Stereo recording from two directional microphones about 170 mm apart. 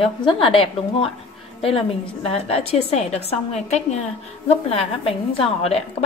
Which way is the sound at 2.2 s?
35° left (ahead or behind).